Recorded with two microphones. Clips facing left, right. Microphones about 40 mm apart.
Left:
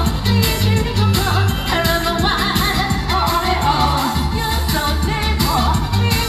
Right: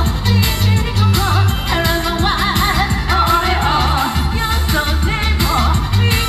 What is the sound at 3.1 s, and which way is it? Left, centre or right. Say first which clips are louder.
Music: right 3 dB; right.